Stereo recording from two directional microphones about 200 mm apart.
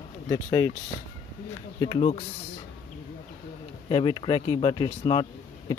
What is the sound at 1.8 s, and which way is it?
Speech, 25° left (ahead or behind).